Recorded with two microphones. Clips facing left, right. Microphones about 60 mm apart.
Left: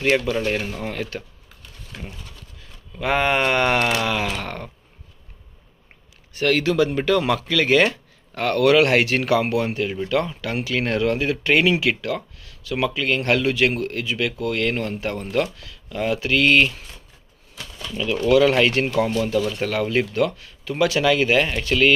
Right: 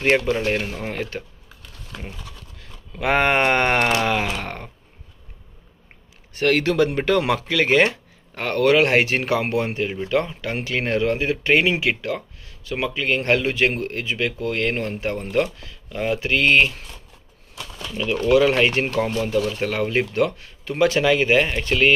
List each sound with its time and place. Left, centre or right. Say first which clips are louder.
0.0 s speech: right 1 dB; right
2.9 s speech: right 1 dB; right
4.4 s speech: left 1 dB; right
6.3 s speech: right 1 dB; right
7.0 s speech: even; right
17.9 s speech: even; right
18.4 s speech: left 1 dB; right